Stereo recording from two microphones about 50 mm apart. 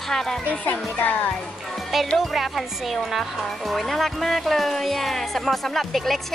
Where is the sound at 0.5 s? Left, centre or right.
Left.